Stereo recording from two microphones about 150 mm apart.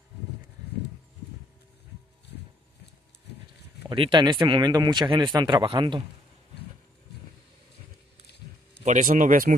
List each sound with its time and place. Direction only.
3.9 s speech: 35° right (ahead or behind)
8.8 s speech: 60° right (ahead or behind)